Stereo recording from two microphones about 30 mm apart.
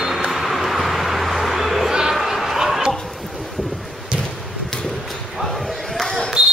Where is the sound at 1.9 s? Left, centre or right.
Centre.